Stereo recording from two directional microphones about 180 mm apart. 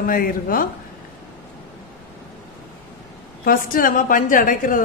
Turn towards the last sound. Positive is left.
turn(degrees=50)  # may be behind; listen again after turning